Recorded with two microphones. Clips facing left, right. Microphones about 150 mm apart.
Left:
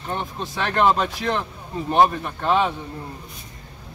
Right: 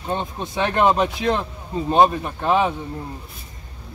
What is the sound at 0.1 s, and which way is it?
Speech, 20° right (ahead or behind).